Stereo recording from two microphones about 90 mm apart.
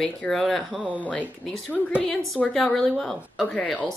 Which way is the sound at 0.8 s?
15° right (ahead or behind).